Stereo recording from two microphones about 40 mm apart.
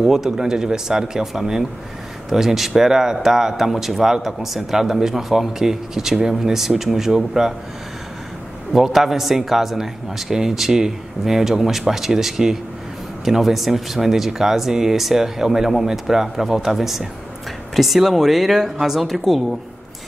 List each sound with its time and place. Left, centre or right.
0.0 s speech: centre
8.7 s speech: centre